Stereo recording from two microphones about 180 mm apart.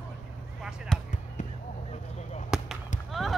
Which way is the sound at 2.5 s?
5° right (ahead or behind).